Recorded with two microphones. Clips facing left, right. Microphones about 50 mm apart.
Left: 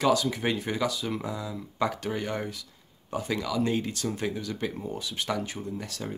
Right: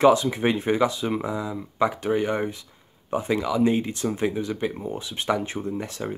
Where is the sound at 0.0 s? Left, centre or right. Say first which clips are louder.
Right 7 dB; right.